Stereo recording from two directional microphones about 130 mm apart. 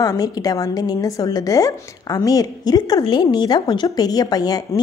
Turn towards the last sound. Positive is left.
turn(degrees=30)  # may be behind; listen again after turning